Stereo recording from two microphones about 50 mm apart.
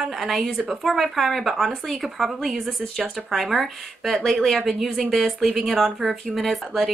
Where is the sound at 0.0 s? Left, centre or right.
Centre.